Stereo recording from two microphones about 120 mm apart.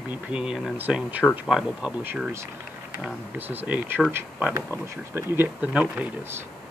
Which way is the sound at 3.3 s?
15° right (ahead or behind).